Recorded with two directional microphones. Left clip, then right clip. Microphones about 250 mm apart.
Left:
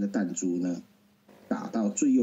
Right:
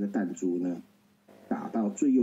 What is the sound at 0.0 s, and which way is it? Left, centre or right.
Speech, left.